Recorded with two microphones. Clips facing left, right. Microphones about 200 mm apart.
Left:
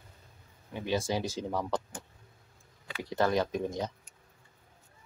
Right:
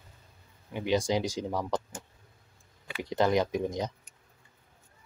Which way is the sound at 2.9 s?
15° right (ahead or behind).